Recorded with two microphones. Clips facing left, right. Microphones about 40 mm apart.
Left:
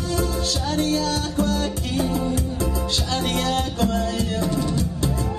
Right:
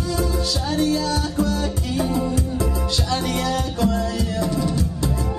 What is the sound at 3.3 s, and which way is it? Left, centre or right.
Music, left.